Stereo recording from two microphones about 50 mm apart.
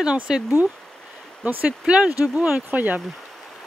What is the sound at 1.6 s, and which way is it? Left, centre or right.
Speech, right.